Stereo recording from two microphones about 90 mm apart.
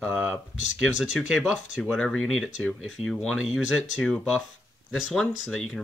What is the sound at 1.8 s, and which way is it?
Speech, 10° left (ahead or behind).